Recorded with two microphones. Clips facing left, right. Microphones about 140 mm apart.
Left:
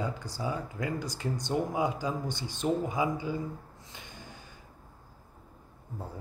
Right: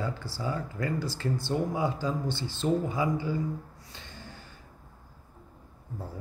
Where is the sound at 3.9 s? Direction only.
15° left (ahead or behind).